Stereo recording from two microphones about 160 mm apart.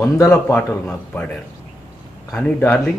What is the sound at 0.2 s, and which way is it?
A man's voice, 15° left (ahead or behind).